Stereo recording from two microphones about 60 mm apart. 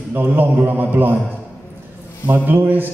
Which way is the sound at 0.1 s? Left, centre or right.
Right.